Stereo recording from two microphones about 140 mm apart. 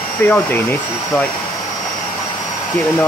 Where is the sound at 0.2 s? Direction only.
15° left (ahead or behind).